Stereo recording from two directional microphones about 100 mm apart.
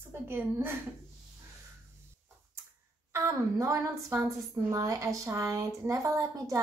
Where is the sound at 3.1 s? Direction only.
25° right (ahead or behind).